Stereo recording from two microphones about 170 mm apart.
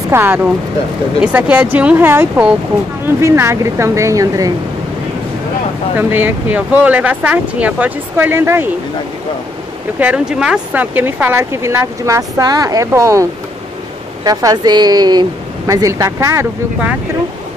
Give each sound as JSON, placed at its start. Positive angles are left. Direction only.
{"t": 0.1, "sound": "speech", "side_deg": -10}
{"t": 5.9, "sound": "speech", "side_deg": -10}
{"t": 9.9, "sound": "speech", "side_deg": -10}